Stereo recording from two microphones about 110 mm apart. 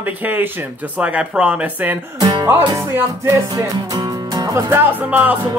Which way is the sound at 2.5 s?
25° right (ahead or behind).